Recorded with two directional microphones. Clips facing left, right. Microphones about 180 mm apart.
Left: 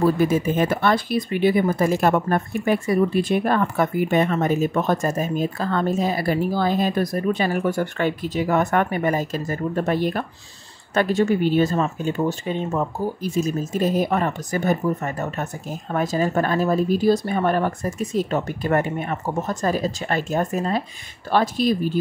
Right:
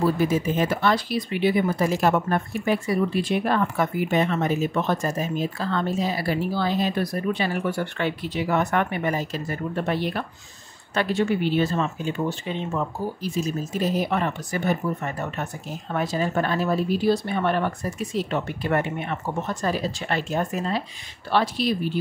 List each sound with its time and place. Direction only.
0.0 s speech: 50° left (ahead or behind)